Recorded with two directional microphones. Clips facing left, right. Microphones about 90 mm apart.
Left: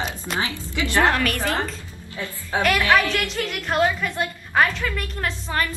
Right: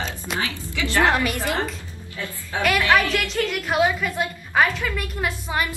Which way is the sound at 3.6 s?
5° right (ahead or behind).